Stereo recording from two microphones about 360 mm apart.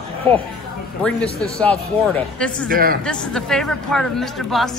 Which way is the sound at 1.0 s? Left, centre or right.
Centre.